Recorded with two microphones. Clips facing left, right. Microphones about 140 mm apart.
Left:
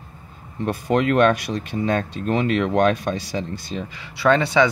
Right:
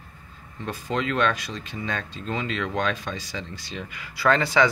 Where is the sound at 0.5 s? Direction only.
60° left (ahead or behind).